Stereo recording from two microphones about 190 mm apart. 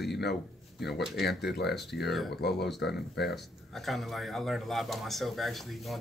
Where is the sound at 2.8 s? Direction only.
60° left (ahead or behind).